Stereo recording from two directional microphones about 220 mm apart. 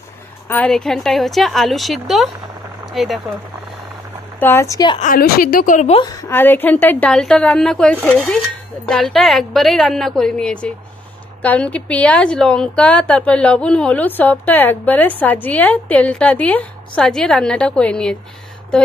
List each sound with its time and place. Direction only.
0.5 s a woman's voice: 5° left (ahead or behind)
4.4 s a woman's voice: 10° left (ahead or behind)
5.0 s a woman's voice: 40° left (ahead or behind); by 6.1 s 25° left (ahead or behind)
6.2 s a woman's voice: 10° left (ahead or behind)